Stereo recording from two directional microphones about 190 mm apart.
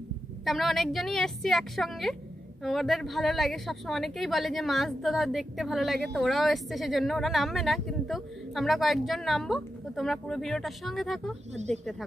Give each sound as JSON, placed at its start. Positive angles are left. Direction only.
{"t": 0.5, "sound": "a woman's voice", "side_deg": 0}
{"t": 11.5, "sound": "speech", "side_deg": -35}